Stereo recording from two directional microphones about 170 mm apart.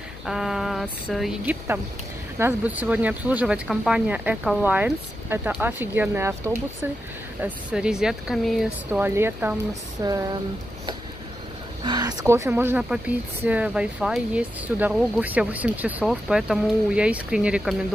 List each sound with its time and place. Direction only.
0.2 s speech: centre (ahead or behind)
9.0 s speech: 15° right (ahead or behind)
11.8 s speech: 25° right (ahead or behind); by 17.7 s 5° right (ahead or behind)